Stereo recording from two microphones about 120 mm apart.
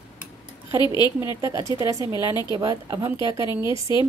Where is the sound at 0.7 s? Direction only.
35° left (ahead or behind).